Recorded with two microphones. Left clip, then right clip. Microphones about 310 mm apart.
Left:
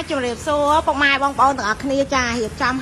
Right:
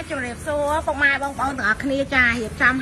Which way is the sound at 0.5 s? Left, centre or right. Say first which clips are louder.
Left 5 dB; right.